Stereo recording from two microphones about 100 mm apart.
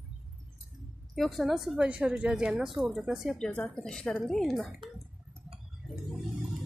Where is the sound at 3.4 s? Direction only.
10° left (ahead or behind).